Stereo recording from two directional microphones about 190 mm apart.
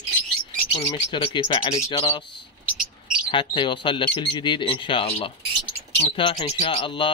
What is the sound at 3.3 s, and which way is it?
Speech, 25° left (ahead or behind).